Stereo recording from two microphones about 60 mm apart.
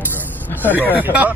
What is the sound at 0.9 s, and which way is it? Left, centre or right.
Speech, right.